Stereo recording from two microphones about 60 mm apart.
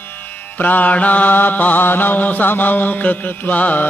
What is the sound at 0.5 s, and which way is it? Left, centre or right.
Mantra, left.